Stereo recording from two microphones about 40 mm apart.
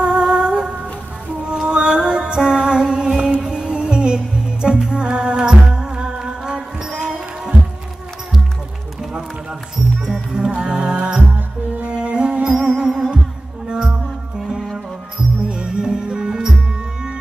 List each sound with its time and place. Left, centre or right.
0.0 s music: right
10.0 s music: centre
11.3 s music: right
11.9 s music: right
12.5 s music: centre
15.4 s music: right